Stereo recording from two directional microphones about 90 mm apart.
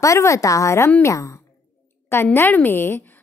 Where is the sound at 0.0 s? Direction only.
35° left (ahead or behind).